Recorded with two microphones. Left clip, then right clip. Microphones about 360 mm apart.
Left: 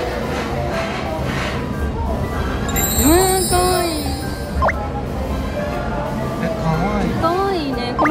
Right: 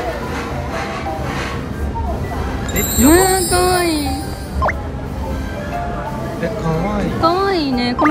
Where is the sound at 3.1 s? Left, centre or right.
Right.